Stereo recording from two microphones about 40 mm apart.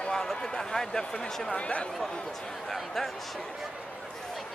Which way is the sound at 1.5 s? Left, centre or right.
Left.